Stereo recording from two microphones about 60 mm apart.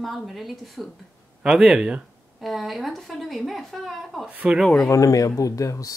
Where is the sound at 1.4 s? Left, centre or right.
Centre.